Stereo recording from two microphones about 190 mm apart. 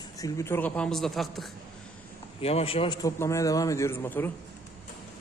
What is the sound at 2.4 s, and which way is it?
A man's voice, 30° left (ahead or behind).